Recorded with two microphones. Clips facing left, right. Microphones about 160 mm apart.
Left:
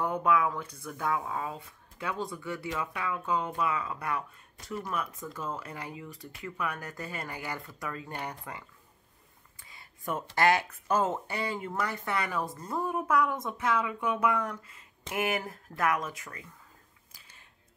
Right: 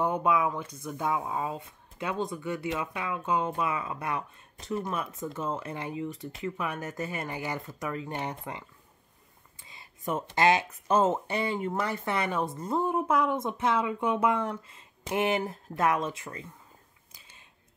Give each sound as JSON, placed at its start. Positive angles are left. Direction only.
{"t": 0.0, "sound": "speech", "side_deg": -20}